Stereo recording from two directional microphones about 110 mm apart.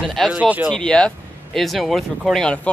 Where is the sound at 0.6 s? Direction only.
5° left (ahead or behind).